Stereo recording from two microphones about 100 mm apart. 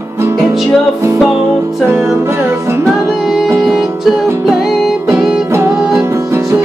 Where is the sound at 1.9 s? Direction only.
30° right (ahead or behind).